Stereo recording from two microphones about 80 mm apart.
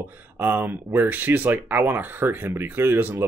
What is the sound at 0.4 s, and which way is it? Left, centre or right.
Speech, right.